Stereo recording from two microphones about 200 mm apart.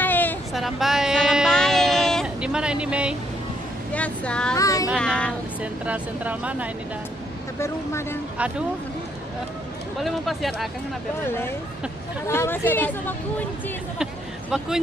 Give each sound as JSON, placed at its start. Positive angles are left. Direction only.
{"t": 0.0, "sound": "a sound", "side_deg": 10}
{"t": 3.9, "sound": "speech", "side_deg": 5}
{"t": 4.6, "sound": "speech", "side_deg": 15}
{"t": 4.9, "sound": "speech", "side_deg": 5}
{"t": 5.6, "sound": "speech", "side_deg": -5}
{"t": 7.5, "sound": "speech", "side_deg": 15}
{"t": 9.9, "sound": "speech", "side_deg": 0}
{"t": 11.2, "sound": "speech", "side_deg": 10}